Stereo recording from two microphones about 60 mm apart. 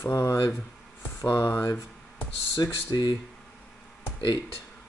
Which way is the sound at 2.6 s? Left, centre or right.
Left.